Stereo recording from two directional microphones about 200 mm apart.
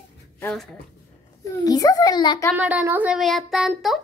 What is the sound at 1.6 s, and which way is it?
Speech, 20° left (ahead or behind).